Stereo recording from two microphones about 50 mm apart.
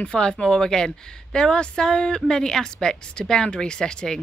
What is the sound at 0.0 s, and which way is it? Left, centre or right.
Speech, centre.